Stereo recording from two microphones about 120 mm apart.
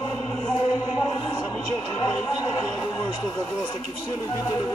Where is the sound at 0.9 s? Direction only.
25° left (ahead or behind).